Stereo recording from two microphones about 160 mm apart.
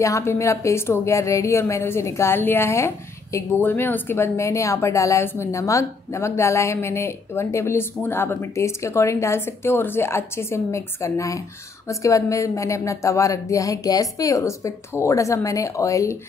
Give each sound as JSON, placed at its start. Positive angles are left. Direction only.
{"t": 0.0, "sound": "speech", "side_deg": 15}